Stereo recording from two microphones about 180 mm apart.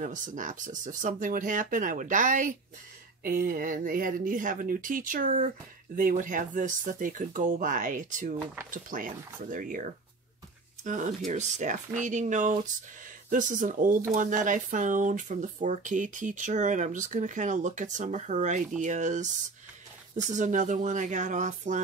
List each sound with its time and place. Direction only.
0.0 s speech: 45° right (ahead or behind)